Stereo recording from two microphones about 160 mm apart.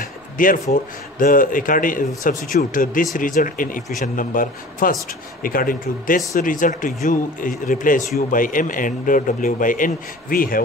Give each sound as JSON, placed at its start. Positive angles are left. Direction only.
{"t": 0.0, "sound": "speech", "side_deg": 60}